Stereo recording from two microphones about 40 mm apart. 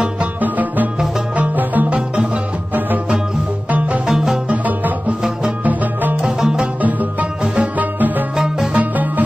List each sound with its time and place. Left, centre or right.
0.2 s music: right
4.1 s music: centre
4.5 s music: right
6.2 s music: right
6.8 s music: right